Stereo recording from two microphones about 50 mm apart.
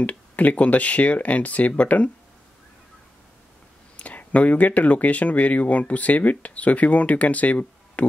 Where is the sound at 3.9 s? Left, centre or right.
Left.